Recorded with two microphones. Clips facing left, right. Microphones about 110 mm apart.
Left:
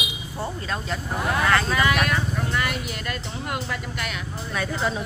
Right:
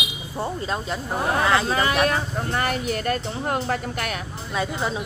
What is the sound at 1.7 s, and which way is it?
Speech, 30° right (ahead or behind).